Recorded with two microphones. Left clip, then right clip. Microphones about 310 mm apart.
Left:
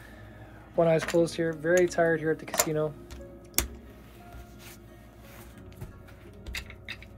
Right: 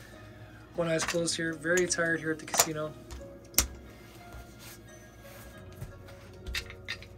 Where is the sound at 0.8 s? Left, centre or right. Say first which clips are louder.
Left 4 dB; centre.